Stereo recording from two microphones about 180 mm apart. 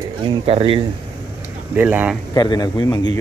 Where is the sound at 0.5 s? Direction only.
30° right (ahead or behind).